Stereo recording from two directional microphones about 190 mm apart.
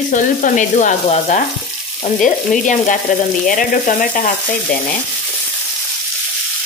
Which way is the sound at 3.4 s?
45° left (ahead or behind).